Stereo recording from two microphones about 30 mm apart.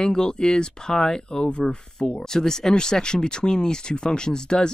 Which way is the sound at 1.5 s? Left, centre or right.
Left.